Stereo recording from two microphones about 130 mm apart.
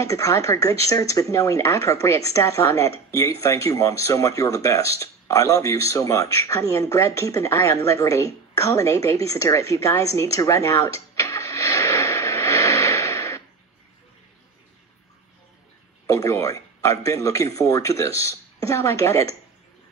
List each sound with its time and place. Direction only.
0.0 s speech: 25° left (ahead or behind)
10.1 s a sound: 25° left (ahead or behind)
16.1 s speech: 25° left (ahead or behind)